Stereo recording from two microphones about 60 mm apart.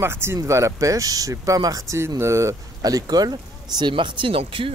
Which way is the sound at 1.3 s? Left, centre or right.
Right.